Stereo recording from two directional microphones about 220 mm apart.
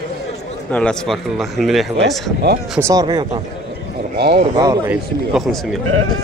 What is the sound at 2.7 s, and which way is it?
Speech, 15° right (ahead or behind).